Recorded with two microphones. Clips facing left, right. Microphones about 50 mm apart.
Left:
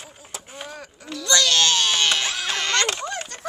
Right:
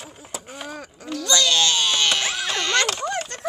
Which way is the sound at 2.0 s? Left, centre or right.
Centre.